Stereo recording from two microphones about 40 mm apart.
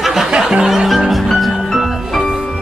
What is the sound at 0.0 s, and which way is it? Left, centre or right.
Music, centre.